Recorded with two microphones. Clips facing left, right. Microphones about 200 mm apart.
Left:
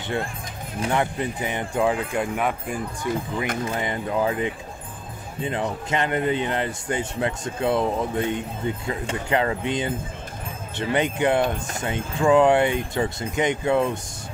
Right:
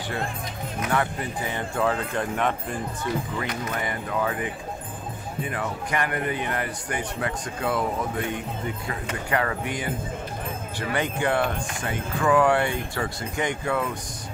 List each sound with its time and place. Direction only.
0.7 s speech: 25° left (ahead or behind); by 2.8 s 10° left (ahead or behind)
3.6 s speech: 25° left (ahead or behind)